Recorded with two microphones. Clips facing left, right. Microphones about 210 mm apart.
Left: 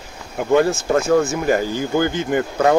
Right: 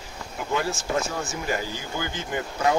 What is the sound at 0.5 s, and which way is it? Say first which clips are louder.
Speech: left 11 dB; 55° left (ahead or behind).